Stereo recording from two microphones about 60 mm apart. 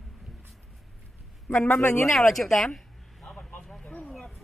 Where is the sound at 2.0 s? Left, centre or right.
Centre.